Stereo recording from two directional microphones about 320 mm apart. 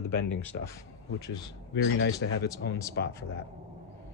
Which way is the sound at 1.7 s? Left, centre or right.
Left.